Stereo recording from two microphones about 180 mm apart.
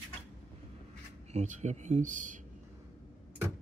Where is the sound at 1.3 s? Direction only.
40° right (ahead or behind).